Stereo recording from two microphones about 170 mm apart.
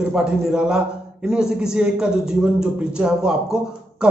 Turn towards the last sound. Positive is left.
turn(degrees=-5)  # may be behind; listen again after turning